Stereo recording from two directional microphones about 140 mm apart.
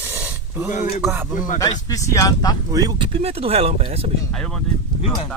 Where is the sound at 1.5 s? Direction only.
25° left (ahead or behind).